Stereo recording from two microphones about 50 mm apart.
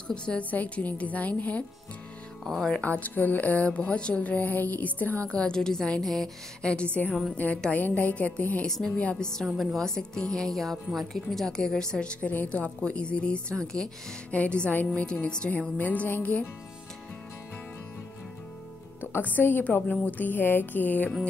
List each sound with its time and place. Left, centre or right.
0.1 s a woman's voice: centre
0.4 s speech: left
2.4 s a woman's voice: centre
2.8 s speech: left
5.2 s a woman's voice: left; by 6.3 s centre
6.6 s a woman's voice: left
7.3 s speech: left
8.6 s a woman's voice: centre
9.6 s a woman's voice: centre
9.8 s a woman's voice: centre
10.5 s a woman's voice: centre
12.2 s a woman's voice: left
15.8 s speech: left
19.3 s speech: left